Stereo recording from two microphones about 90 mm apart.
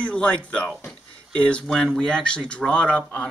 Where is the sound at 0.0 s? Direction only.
15° left (ahead or behind).